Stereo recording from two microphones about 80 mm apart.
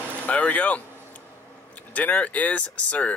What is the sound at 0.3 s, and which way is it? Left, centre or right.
Speech, centre.